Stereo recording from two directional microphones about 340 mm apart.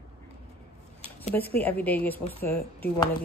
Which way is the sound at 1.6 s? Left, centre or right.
Centre.